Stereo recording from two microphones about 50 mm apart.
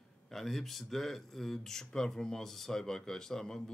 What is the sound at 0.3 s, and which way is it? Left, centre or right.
Speech, centre.